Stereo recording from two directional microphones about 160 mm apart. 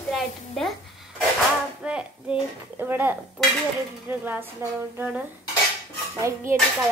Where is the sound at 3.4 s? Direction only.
Centre (ahead or behind).